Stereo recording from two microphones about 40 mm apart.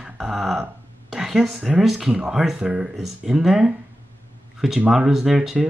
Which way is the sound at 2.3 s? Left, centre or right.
Centre.